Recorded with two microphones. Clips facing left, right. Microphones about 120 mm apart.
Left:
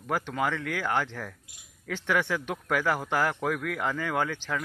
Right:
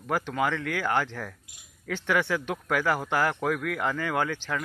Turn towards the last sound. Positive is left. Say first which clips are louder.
# right 1 dB
turn(degrees=5)  # may be behind; listen again after turning